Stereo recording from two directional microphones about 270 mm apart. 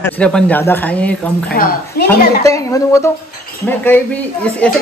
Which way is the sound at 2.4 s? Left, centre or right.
Centre.